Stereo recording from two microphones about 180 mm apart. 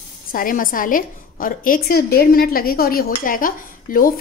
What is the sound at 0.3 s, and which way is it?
A woman's voice, 50° left (ahead or behind).